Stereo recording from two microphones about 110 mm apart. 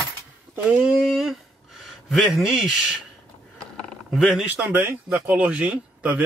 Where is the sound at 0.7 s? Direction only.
5° right (ahead or behind).